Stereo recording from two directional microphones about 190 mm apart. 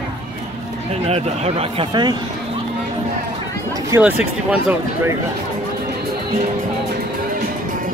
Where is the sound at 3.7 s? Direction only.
15° right (ahead or behind).